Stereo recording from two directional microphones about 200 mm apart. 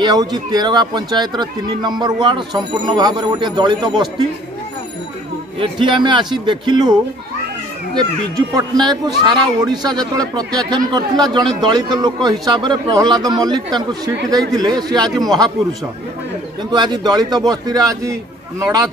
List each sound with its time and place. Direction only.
0.0 s speech: 20° right (ahead or behind)
5.6 s speech: 25° right (ahead or behind)
8.5 s speech: 20° right (ahead or behind)
16.7 s speech: 20° right (ahead or behind)